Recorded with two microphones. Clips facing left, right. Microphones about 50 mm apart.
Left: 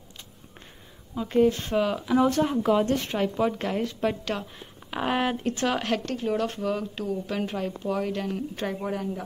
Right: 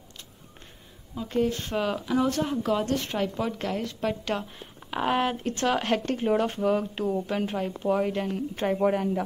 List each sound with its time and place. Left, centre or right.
1.1 s speech: centre
4.2 s speech: centre
6.0 s speech: right
7.2 s speech: centre
8.8 s a woman's voice: right